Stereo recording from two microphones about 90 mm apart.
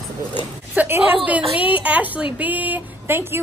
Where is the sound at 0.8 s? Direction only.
25° right (ahead or behind).